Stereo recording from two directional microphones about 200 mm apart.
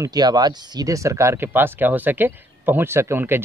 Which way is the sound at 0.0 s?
20° right (ahead or behind).